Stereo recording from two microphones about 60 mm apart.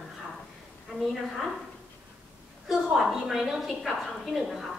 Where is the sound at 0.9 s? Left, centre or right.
Centre.